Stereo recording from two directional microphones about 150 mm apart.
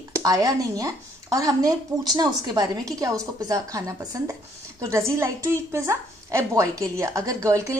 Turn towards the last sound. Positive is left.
turn(degrees=-20)  # may be behind; listen again after turning